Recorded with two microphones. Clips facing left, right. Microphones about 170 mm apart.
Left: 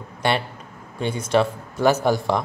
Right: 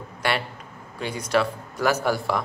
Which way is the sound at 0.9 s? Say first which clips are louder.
Left 3 dB; 25° left (ahead or behind).